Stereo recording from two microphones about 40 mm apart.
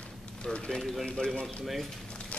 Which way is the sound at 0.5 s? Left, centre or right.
Left.